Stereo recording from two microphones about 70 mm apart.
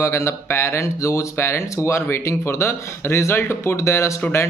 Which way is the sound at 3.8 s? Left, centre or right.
Left.